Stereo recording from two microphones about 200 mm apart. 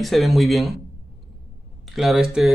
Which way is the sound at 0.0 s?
Centre (ahead or behind).